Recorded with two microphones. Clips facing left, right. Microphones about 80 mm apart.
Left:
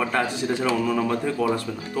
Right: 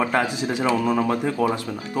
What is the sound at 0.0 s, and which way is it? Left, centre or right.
A man's voice, centre.